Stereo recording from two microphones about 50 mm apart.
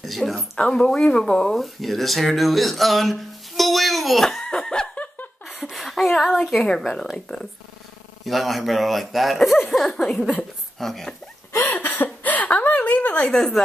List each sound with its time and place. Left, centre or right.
0.0 s a woman's voice: centre
0.6 s a woman's voice: centre
1.6 s speech: centre
4.5 s snicker: centre
5.5 s a sound: centre
6.0 s a woman's voice: centre
11.7 s a sound: left
13.3 s a woman's voice: centre